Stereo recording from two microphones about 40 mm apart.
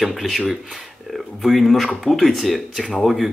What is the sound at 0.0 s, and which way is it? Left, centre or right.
Speech, centre.